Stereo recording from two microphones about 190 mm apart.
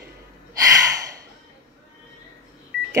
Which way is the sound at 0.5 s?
20° right (ahead or behind).